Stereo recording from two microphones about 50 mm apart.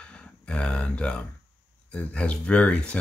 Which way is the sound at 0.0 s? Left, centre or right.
Left.